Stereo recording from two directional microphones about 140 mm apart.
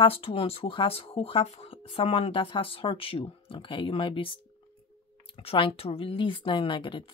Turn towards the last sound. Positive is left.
turn(degrees=35)  # may be behind; listen again after turning